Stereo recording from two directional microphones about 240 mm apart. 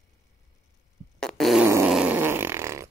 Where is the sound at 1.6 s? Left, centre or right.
Centre.